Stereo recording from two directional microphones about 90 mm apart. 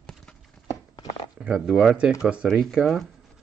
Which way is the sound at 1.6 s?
5° right (ahead or behind).